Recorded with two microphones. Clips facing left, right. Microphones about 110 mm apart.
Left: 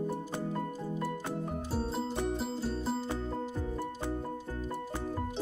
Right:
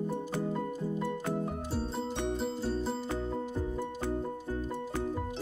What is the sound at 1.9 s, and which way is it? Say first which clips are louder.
Music: even; 5° left (ahead or behind).